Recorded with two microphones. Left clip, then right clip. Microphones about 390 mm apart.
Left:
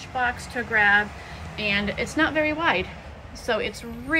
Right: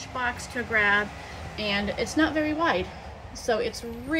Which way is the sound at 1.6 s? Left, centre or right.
Right.